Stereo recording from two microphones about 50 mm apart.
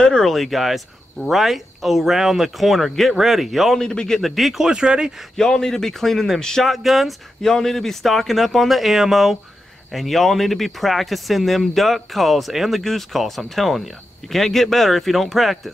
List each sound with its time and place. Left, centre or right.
0.0 s speech: centre
3.8 s speech: centre
4.2 s speech: centre
4.6 s speech: centre
5.4 s speech: centre